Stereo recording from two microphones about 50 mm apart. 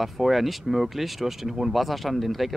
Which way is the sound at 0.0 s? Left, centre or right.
Centre.